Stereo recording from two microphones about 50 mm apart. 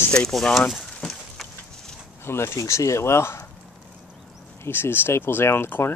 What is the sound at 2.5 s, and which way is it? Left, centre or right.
Speech, left.